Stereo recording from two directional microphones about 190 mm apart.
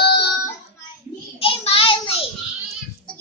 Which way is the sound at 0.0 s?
60° left (ahead or behind).